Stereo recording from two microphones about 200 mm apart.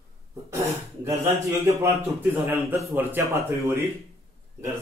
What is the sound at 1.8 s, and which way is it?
A man's voice, 10° right (ahead or behind).